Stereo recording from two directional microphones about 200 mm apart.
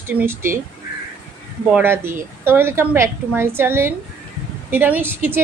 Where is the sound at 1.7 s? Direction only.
10° right (ahead or behind).